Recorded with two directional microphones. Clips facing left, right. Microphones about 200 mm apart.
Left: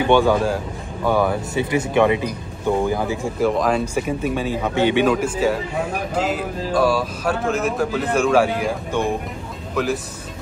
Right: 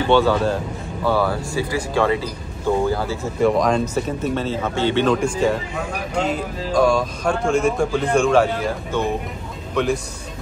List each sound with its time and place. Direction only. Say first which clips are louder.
0.0 s speech: even; 15° left (ahead or behind)
3.3 s speech: right 2 dB; 5° left (ahead or behind)
9.8 s speech: right 1 dB; 5° left (ahead or behind)